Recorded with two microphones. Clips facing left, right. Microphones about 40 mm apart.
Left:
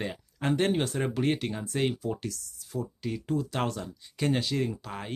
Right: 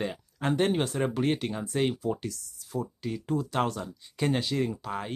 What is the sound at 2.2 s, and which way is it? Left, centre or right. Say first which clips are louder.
Speech: even; right.